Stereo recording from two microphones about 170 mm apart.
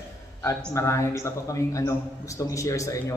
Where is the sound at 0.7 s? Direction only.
15° left (ahead or behind).